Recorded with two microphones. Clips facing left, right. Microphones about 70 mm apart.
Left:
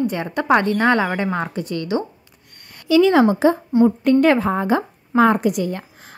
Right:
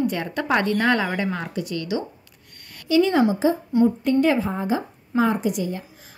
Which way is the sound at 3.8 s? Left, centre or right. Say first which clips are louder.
Left 5 dB; left.